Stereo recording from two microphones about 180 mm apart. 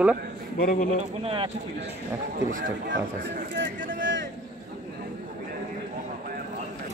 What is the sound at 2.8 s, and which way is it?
Speech, 85° right.